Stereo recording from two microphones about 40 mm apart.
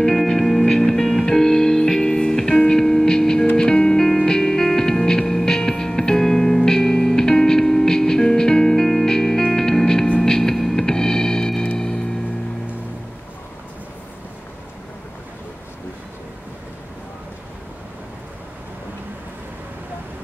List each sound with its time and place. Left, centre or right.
0.0 s music: centre